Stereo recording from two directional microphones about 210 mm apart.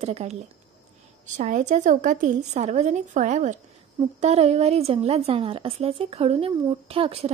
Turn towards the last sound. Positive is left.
turn(degrees=-30)  # may be behind; listen again after turning